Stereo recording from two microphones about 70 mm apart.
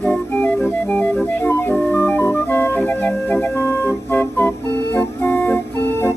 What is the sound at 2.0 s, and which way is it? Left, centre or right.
Music, left.